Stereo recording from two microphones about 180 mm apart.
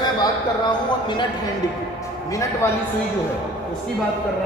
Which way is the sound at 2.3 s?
15° left (ahead or behind).